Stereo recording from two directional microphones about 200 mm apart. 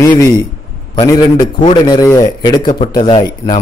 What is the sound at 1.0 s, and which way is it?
A man's voice, 15° left (ahead or behind).